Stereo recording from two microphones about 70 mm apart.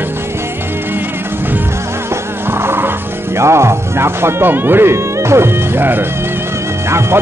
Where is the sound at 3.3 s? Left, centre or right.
Right.